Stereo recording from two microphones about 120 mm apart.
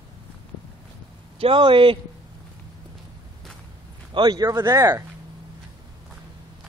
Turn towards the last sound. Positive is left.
turn(degrees=-25)  # may be behind; listen again after turning